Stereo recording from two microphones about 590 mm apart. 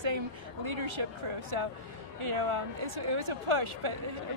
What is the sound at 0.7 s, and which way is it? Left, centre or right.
Speech, right.